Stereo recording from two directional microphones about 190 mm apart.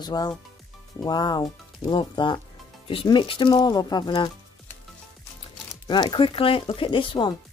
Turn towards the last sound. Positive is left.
turn(degrees=25)  # may be behind; listen again after turning